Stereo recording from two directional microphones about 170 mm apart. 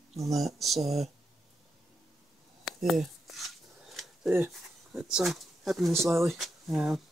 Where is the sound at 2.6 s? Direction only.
Centre (ahead or behind).